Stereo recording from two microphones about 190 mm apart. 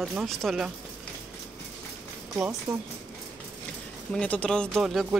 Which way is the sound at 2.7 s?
20° right (ahead or behind).